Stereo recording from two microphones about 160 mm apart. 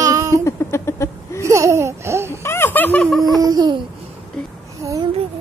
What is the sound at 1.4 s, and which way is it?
Speech, 20° right (ahead or behind).